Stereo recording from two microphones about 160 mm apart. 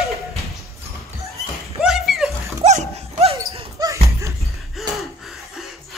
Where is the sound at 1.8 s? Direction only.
5° right (ahead or behind).